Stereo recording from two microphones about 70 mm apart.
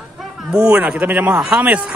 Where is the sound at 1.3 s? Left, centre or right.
Centre.